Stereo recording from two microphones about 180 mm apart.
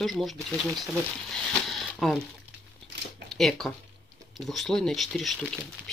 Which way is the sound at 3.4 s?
Centre (ahead or behind).